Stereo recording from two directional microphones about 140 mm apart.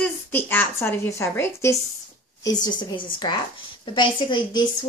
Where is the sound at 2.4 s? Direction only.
30° left (ahead or behind).